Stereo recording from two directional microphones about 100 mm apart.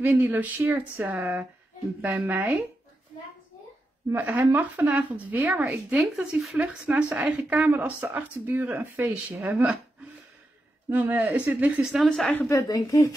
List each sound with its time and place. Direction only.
0.0 s speech: 20° right (ahead or behind)
4.1 s speech: 20° right (ahead or behind)
6.5 s speech: 15° right (ahead or behind)
10.9 s speech: 20° right (ahead or behind)
12.1 s speech: 15° left (ahead or behind)
12.4 s a woman's voice: 35° left (ahead or behind)